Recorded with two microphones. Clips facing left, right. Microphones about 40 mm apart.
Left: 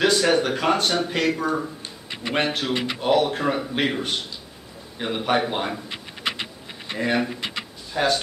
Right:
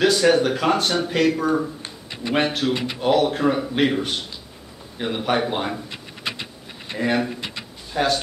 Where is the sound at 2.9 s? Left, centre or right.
Centre.